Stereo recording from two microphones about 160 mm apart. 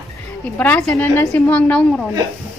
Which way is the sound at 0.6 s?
10° left (ahead or behind).